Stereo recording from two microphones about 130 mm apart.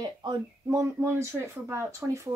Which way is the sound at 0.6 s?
20° right (ahead or behind).